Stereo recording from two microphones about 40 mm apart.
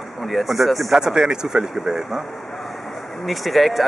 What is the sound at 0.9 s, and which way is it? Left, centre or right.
Speech, centre.